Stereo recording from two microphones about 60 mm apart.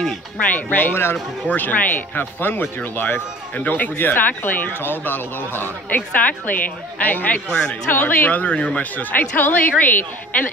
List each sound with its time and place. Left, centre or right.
0.4 s speech: left
1.5 s speech: left
7.4 s speech: centre
7.9 s a woman's voice: left